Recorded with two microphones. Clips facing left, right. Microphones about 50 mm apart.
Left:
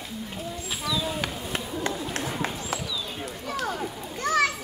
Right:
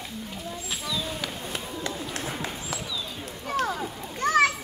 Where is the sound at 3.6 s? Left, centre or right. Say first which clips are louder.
Right 3 dB; right.